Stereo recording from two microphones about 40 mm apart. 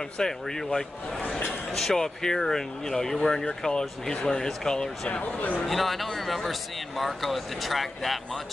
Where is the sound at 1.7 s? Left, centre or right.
Centre.